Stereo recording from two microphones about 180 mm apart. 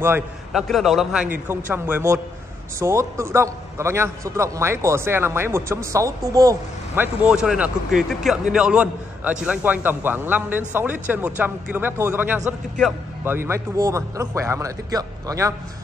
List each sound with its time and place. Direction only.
0.5 s a man's voice: centre (ahead or behind); by 6.5 s 20° right (ahead or behind)
7.0 s a man's voice: 5° right (ahead or behind)